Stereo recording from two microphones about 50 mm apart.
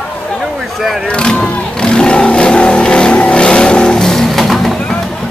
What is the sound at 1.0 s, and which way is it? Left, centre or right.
Vehicle, left.